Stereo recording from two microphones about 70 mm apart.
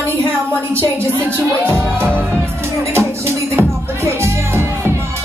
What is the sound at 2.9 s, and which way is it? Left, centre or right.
Music, right.